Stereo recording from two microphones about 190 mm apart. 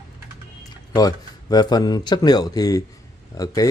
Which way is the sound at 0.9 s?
20° left (ahead or behind).